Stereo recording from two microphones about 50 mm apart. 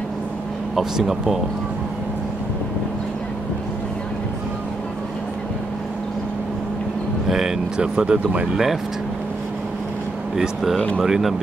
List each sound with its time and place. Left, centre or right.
0.7 s speech: centre
7.2 s speech: centre
10.3 s speech: centre